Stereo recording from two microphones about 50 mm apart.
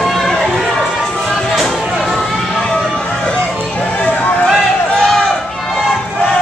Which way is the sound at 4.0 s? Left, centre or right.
Left.